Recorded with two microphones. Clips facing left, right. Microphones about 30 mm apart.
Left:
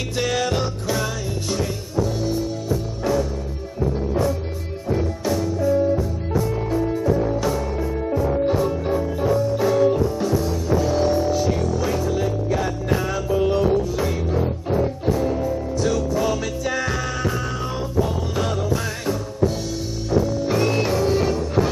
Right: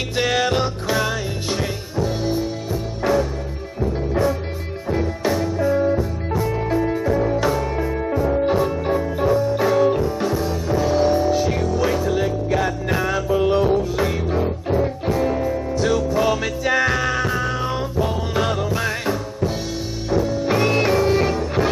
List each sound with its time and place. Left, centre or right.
0.1 s music: right
7.3 s music: right